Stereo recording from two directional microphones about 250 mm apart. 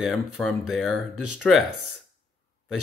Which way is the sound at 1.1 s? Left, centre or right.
Right.